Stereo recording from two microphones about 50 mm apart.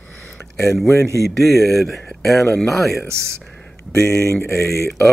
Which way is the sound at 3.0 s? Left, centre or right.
Right.